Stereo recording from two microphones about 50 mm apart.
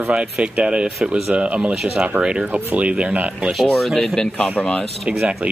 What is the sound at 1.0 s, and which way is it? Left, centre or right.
Speech, centre.